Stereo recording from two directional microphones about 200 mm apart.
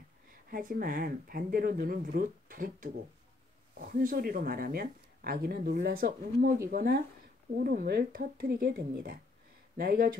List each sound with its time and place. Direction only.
0.5 s speech: 45° right (ahead or behind)